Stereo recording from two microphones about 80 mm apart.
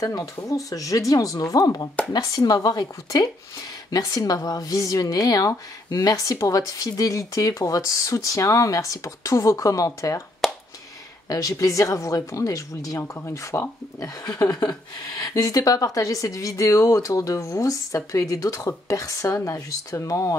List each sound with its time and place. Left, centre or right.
0.0 s speech: left
3.9 s speech: left
10.4 s a sound: centre
11.2 s speech: left